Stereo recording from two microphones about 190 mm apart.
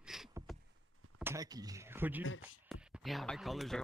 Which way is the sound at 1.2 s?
15° right (ahead or behind).